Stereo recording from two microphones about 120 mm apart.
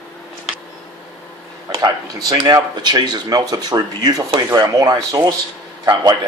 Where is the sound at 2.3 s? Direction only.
40° right (ahead or behind).